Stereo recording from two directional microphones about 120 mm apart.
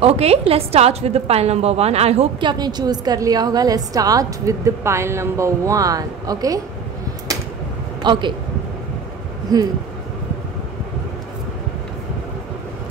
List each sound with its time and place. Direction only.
0.0 s a woman's voice: 55° right (ahead or behind)
2.4 s a woman's voice: 35° right (ahead or behind)
8.0 s speech: 40° right (ahead or behind)
9.5 s a woman's voice: 30° right (ahead or behind)